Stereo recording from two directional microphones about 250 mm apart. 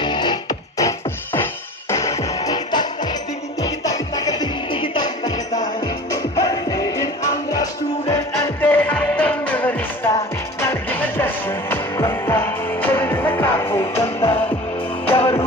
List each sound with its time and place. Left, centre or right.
0.0 s music: centre
8.1 s music: centre
14.0 s music: left